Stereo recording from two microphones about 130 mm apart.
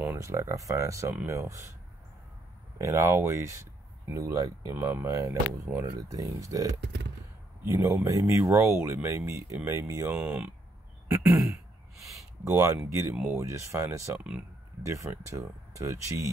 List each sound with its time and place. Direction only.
0.1 s speech: 25° right (ahead or behind)
2.8 s speech: 20° right (ahead or behind)
10.1 s speech: 10° right (ahead or behind)
13.1 s speech: 10° right (ahead or behind)
13.4 s speech: 25° right (ahead or behind)